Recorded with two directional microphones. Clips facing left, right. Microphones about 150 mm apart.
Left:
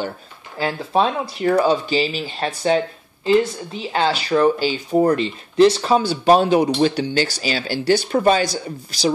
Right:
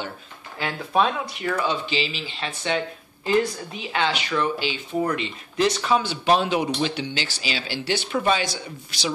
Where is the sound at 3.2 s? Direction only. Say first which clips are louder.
Left 5 dB; 30° left (ahead or behind).